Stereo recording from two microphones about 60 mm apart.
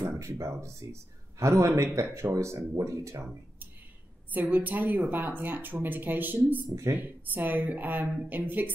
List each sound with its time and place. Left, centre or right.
0.2 s speech: right
4.3 s a woman's voice: right